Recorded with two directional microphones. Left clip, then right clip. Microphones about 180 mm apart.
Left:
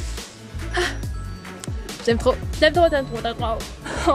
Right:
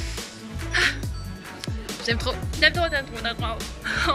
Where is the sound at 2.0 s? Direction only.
40° left (ahead or behind).